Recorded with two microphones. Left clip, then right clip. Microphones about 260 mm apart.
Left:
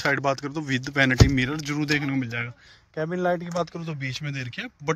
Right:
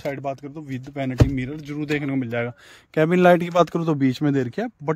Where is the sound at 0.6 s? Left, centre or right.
Left.